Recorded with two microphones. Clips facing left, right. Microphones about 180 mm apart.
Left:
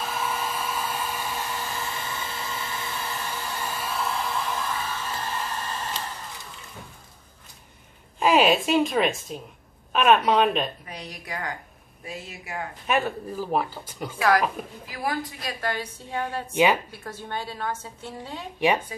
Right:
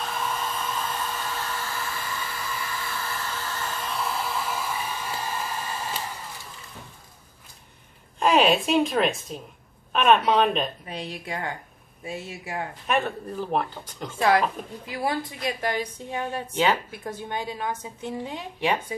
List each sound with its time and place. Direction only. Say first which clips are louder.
0.0 s hair dryer: left 1 dB; 5° left (ahead or behind)
8.2 s speech: even; 5° left (ahead or behind)
10.9 s a woman's voice: right 4 dB; 25° right (ahead or behind)
12.8 s speech: left 1 dB; 5° left (ahead or behind)
14.9 s a woman's voice: right 2 dB; 25° right (ahead or behind)